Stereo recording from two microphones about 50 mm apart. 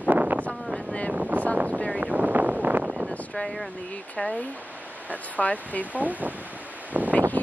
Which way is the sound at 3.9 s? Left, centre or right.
Left.